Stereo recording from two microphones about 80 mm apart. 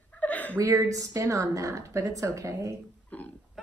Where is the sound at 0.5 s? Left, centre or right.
Right.